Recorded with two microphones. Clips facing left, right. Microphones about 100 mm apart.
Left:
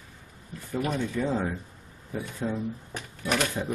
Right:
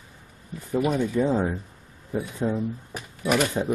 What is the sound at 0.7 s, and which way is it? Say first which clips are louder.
Speech: right 6 dB; 10° right (ahead or behind).